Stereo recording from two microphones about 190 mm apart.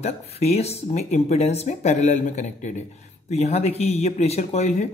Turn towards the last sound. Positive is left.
turn(degrees=35)  # may be behind; listen again after turning